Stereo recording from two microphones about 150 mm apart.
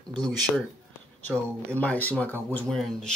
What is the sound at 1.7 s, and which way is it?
Speech, 10° left (ahead or behind).